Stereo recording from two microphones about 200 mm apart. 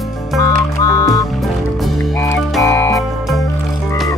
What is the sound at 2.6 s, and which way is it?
Music, 15° left (ahead or behind).